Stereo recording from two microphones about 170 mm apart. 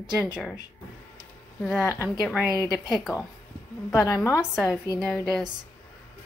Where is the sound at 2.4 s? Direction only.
20° left (ahead or behind).